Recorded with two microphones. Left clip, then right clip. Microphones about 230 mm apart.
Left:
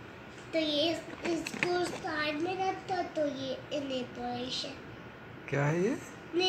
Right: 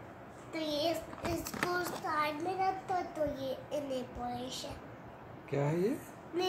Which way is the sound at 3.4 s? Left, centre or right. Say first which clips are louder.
Left 1 dB; right.